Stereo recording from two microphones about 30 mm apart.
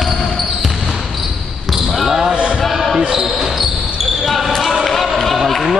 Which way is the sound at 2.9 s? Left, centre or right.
Right.